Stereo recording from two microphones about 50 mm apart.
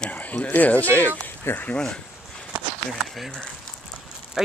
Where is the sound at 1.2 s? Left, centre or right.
Left.